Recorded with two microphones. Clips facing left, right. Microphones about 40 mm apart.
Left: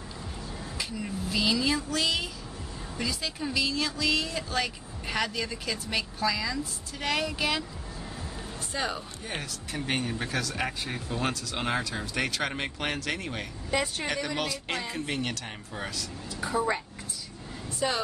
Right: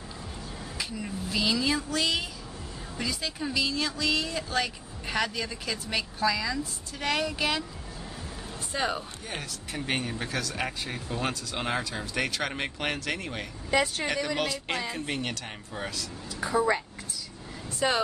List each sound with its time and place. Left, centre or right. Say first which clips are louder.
0.7 s speech: even; centre
8.7 s speech: right 2 dB; centre
9.7 s speech: even; centre
13.7 s speech: right 3 dB; right
14.0 s speech: right 2 dB; centre
17.8 s speech: right 3 dB; right